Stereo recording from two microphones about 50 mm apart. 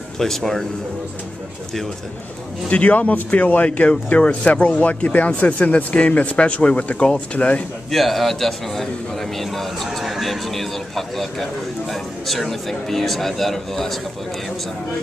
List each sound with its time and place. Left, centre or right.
0.2 s speech: centre
2.7 s speech: left
7.9 s a man's voice: centre